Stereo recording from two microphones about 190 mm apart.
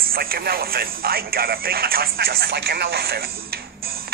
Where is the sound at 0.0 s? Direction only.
50° right (ahead or behind).